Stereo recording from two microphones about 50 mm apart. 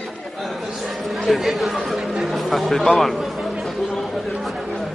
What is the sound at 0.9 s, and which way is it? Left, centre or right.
Speech, centre.